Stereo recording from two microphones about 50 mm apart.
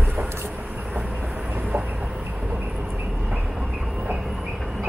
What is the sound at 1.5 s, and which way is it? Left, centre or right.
Chicken, right.